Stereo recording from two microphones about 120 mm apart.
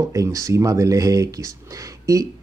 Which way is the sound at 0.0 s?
25° right (ahead or behind).